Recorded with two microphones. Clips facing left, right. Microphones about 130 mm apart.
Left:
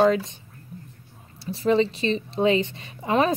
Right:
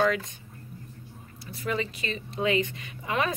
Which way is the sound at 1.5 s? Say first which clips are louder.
Left 10 dB; 30° left (ahead or behind).